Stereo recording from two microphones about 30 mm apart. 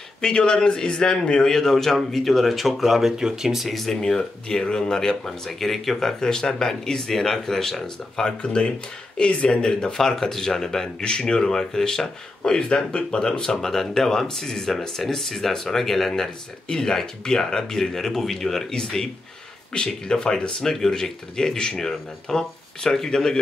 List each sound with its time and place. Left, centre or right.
0.2 s speech: left
1.5 s speech: centre
3.6 s speech: centre
4.0 s speech: centre
5.5 s speech: centre; by 9.9 s left
9.9 s speech: centre
11.0 s speech: left
12.6 s speech: left
13.6 s speech: centre
19.7 s speech: left